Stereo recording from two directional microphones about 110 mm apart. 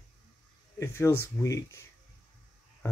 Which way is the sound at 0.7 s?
25° left (ahead or behind).